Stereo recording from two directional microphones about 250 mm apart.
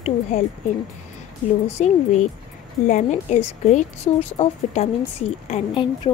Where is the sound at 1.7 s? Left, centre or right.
Left.